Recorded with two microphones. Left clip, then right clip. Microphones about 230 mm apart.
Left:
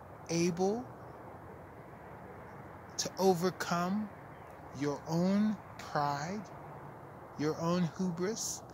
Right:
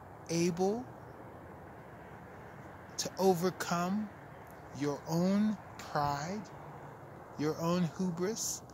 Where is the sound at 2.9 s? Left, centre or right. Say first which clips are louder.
Even; centre.